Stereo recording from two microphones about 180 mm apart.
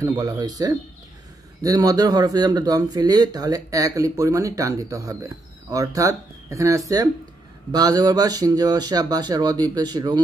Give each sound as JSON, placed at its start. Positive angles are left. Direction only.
{"t": 0.0, "sound": "speech", "side_deg": -20}